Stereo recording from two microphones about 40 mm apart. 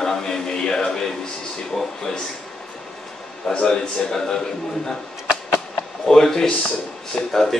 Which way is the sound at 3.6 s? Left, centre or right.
Centre.